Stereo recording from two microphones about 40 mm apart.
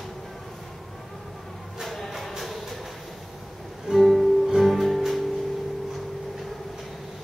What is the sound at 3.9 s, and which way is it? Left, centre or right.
Music, centre.